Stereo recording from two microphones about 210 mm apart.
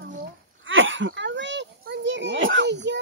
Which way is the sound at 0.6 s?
65° right (ahead or behind).